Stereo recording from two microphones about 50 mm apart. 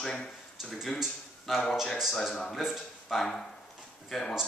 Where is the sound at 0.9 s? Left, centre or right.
Centre.